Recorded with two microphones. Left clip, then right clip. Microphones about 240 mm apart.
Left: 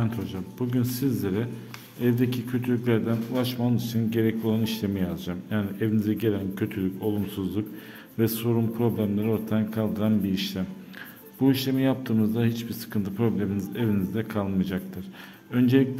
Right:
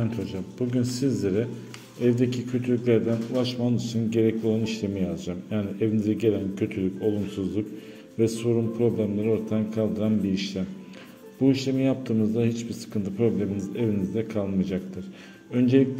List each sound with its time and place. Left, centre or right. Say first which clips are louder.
0.0 s a man's voice: right 1 dB; centre